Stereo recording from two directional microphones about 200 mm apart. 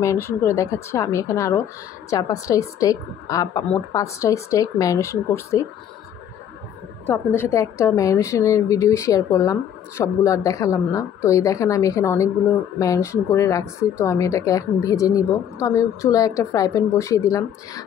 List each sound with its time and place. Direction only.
0.0 s a woman's voice: 15° left (ahead or behind)
7.1 s a woman's voice: 15° left (ahead or behind)